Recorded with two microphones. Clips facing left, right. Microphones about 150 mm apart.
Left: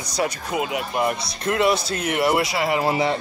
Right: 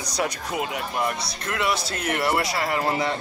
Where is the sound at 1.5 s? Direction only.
25° left (ahead or behind).